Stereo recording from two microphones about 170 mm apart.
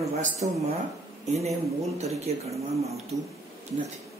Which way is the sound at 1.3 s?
40° right (ahead or behind).